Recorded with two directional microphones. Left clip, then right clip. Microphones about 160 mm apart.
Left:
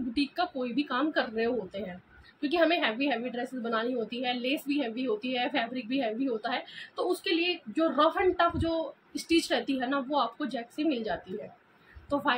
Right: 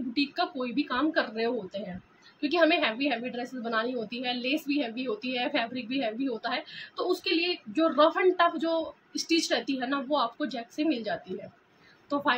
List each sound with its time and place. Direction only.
0.1 s a woman's voice: 5° right (ahead or behind)